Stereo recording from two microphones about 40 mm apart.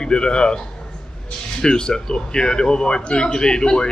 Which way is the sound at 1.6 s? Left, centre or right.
Centre.